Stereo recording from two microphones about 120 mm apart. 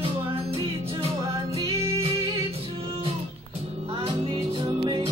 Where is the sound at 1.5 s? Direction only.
50° right (ahead or behind).